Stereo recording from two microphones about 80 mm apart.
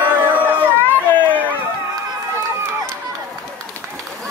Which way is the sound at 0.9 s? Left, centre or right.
Left.